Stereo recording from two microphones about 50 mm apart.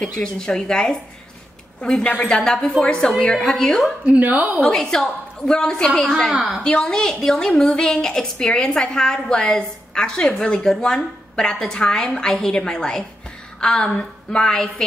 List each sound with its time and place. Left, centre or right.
0.0 s a woman's voice: centre
4.2 s a woman's voice: right
4.7 s a woman's voice: centre
6.3 s a woman's voice: centre
6.6 s a woman's voice: centre